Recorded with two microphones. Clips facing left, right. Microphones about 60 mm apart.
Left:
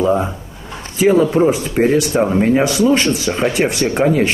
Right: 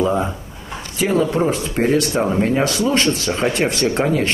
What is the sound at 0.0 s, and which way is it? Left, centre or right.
Speech, centre.